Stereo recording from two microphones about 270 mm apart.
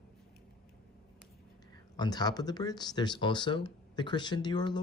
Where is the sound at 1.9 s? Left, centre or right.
Centre.